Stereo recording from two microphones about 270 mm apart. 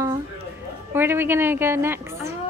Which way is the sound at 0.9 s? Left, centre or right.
Centre.